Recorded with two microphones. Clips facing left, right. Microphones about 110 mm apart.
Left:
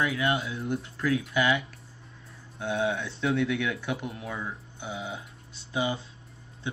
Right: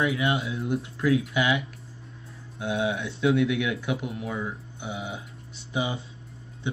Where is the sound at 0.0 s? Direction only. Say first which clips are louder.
Right 2 dB; 25° right (ahead or behind).